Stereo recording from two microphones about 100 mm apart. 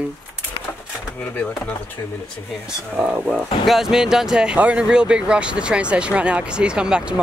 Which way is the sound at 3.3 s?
5° right (ahead or behind).